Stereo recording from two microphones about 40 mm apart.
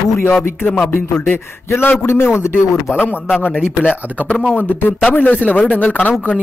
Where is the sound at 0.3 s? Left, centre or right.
Left.